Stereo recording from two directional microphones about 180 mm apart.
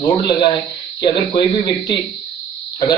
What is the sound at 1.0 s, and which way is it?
A man's voice, 25° left (ahead or behind).